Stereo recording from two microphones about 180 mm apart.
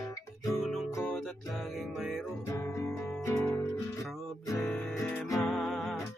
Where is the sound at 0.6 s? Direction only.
Centre (ahead or behind).